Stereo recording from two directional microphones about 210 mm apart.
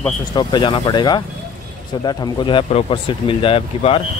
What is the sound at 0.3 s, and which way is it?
Speech, 20° left (ahead or behind).